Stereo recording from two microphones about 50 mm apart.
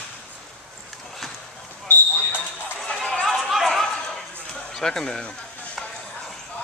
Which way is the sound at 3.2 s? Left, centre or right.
Centre.